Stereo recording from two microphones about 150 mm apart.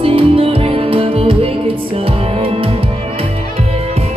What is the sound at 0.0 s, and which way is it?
Music, 40° right (ahead or behind).